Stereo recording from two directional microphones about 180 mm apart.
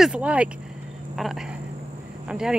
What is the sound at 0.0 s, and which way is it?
Speech, 5° right (ahead or behind).